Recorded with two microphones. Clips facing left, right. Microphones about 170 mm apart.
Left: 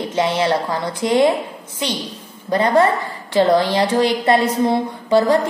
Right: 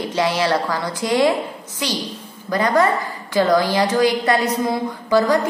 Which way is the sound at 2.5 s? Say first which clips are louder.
Left 2 dB; 30° left (ahead or behind).